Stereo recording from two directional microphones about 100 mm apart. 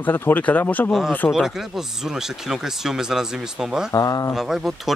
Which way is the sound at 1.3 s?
5° right (ahead or behind).